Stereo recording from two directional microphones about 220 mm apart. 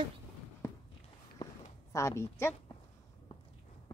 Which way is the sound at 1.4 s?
15° left (ahead or behind).